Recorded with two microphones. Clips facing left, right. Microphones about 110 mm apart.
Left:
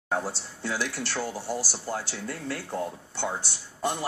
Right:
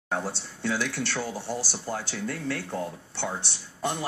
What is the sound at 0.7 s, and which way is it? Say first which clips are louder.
Speech: right 2 dB; 5° left (ahead or behind).